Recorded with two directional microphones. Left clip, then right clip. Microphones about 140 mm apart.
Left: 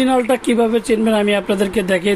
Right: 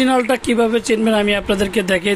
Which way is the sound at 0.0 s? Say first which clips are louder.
Even; centre (ahead or behind).